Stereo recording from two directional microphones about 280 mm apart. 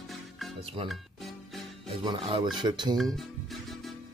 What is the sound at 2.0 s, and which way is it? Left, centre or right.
Speech, centre.